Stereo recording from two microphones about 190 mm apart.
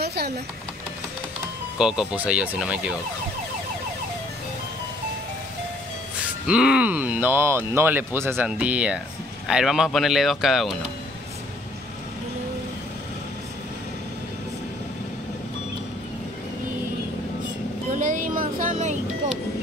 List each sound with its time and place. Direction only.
0.0 s speech: 60° right (ahead or behind)
1.8 s speech: 5° right (ahead or behind)
6.4 s speech: 5° right (ahead or behind)
17.9 s a sound: 45° right (ahead or behind)